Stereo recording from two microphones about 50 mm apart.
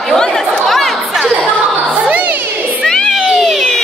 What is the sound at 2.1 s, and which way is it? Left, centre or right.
Crowd, right.